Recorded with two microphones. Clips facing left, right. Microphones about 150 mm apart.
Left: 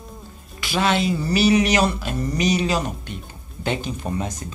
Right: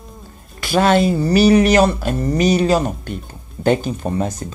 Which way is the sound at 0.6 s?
45° right (ahead or behind).